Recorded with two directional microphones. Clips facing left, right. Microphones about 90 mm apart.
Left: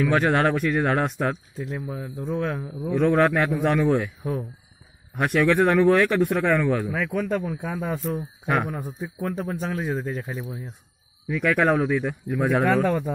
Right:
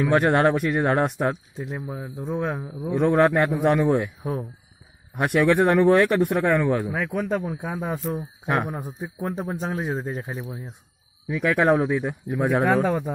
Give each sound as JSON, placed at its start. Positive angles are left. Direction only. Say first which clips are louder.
{"t": 0.0, "sound": "speech", "louder": "right 2 dB", "side_deg": -20}
{"t": 4.2, "sound": "a man's voice", "louder": "even", "side_deg": -30}
{"t": 5.1, "sound": "speech", "louder": "right 1 dB", "side_deg": -15}
{"t": 8.7, "sound": "a man's voice", "louder": "even", "side_deg": -15}
{"t": 11.3, "sound": "speech", "louder": "right 1 dB", "side_deg": -5}